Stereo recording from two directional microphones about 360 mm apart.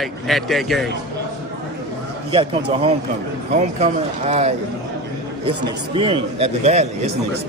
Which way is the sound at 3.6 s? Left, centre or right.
Centre.